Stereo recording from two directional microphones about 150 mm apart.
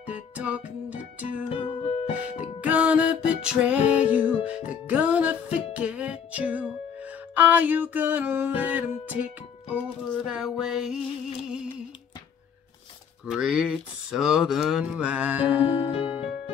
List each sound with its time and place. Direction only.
0.0 s music: 10° right (ahead or behind)
1.5 s music: 35° left (ahead or behind)
2.6 s music: 10° right (ahead or behind)
10.2 s mantra: 5° right (ahead or behind)
11.4 s a sound: 5° right (ahead or behind)
13.3 s mantra: 5° right (ahead or behind)
15.9 s music: 35° left (ahead or behind)